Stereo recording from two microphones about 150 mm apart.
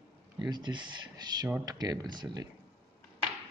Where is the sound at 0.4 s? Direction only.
30° right (ahead or behind).